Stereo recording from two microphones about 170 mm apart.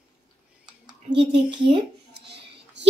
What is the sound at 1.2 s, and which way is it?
Speech, 30° right (ahead or behind).